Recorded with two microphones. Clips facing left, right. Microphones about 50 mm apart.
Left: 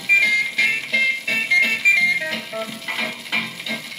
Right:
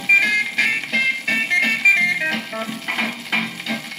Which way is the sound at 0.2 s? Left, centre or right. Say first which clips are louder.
Even; right.